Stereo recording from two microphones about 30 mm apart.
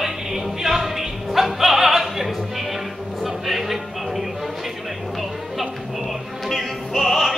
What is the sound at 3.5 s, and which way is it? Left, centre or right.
Music, centre.